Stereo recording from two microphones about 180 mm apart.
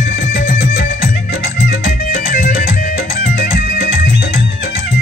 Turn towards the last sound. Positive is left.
turn(degrees=50)  # may be behind; listen again after turning